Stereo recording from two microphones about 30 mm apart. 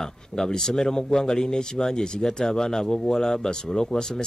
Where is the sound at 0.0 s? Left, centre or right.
Centre.